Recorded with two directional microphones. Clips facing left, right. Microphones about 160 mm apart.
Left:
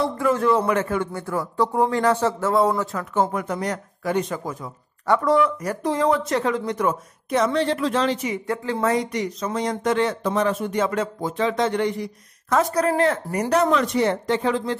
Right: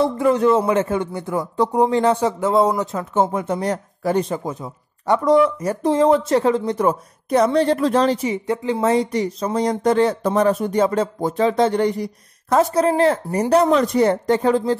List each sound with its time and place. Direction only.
0.0 s speech: 20° right (ahead or behind); by 8.4 s 35° right (ahead or behind)
8.5 s speech: 20° right (ahead or behind)
8.9 s speech: 30° right (ahead or behind)